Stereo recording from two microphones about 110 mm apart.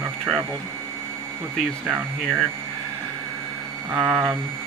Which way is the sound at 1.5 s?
Centre (ahead or behind).